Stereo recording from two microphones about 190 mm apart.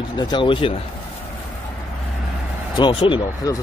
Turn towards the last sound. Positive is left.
turn(degrees=20)  # may be behind; listen again after turning